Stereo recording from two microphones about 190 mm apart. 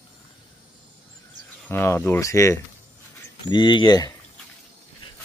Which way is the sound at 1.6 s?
10° left (ahead or behind).